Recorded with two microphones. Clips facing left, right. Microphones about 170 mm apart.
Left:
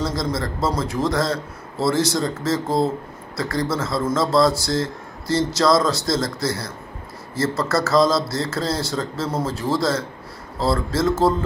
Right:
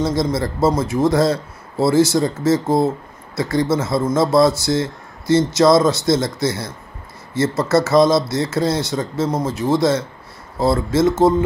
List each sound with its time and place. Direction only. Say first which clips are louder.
0.0 s speech: right 5 dB; 25° right (ahead or behind)